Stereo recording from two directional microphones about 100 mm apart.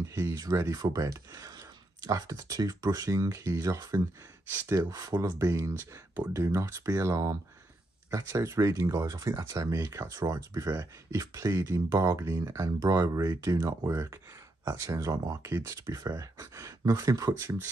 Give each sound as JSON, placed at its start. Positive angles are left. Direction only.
{"t": 0.0, "sound": "speech", "side_deg": -30}